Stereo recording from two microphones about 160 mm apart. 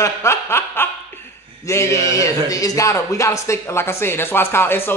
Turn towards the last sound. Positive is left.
turn(degrees=15)  # may be behind; listen again after turning